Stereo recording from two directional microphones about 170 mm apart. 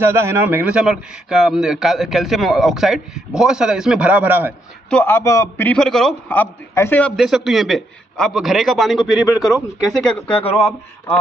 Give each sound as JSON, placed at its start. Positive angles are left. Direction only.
{"t": 0.0, "sound": "a man's voice", "side_deg": -15}
{"t": 4.8, "sound": "a man's voice", "side_deg": 10}